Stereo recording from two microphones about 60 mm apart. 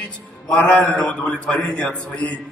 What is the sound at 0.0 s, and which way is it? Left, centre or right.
A man's voice, left.